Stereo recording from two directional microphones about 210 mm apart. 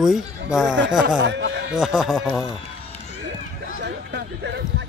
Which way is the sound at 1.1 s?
55° right (ahead or behind).